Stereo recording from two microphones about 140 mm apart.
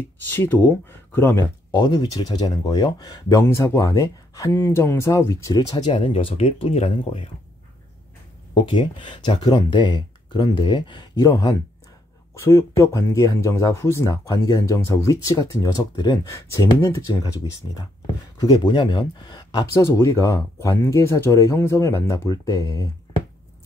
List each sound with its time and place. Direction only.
0.3 s speech: 15° left (ahead or behind)
1.7 s speech: 30° left (ahead or behind); by 7.2 s 50° left (ahead or behind)
8.5 s speech: 35° left (ahead or behind)
18.4 s speech: 35° left (ahead or behind)